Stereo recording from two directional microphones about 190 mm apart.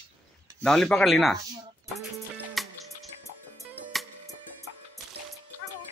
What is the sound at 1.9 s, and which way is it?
Music, centre (ahead or behind).